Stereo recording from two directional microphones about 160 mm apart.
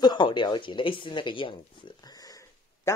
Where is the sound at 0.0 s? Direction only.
30° left (ahead or behind).